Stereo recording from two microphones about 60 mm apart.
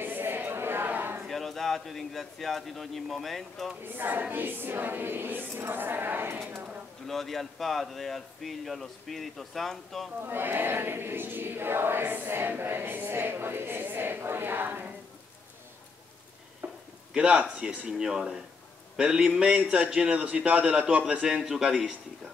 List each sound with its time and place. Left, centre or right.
0.0 s a sound: right
1.2 s speech: centre
3.8 s choir: right
7.1 s speech: centre
10.2 s choir: right
16.6 s stir: right
17.1 s a man's voice: centre